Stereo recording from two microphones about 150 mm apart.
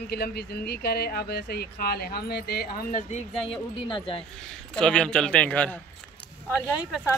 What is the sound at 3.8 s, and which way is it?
Speech, 35° left (ahead or behind).